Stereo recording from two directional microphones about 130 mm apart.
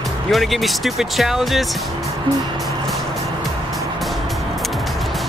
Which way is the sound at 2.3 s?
40° right (ahead or behind).